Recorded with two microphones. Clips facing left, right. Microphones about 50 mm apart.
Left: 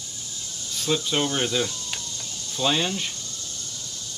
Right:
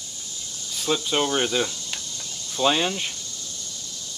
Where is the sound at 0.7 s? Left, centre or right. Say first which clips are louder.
Right 1 dB; centre.